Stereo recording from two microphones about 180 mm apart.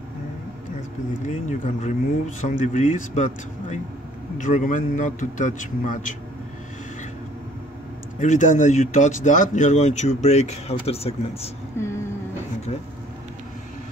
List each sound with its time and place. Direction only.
1.2 s speech: 45° left (ahead or behind)
8.2 s speech: 45° left (ahead or behind)